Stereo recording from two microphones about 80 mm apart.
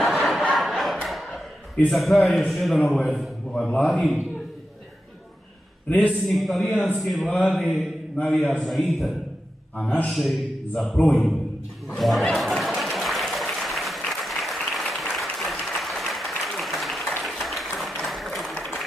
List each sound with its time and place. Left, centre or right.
0.0 s a sound: centre
1.9 s a man's voice: centre
5.9 s a man's voice: centre
6.2 s a man's voice: centre
7.2 s a man's voice: centre
7.5 s a man's voice: centre
9.8 s a man's voice: centre
10.1 s a man's voice: centre
11.0 s a man's voice: left
12.0 s a man's voice: centre
12.4 s applause: centre
17.7 s a sound: centre